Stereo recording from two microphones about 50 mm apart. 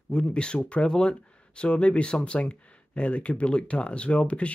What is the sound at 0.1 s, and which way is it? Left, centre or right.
Speech, left.